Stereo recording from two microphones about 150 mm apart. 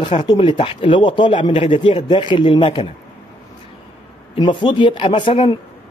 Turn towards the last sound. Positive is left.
turn(degrees=35)  # may be behind; listen again after turning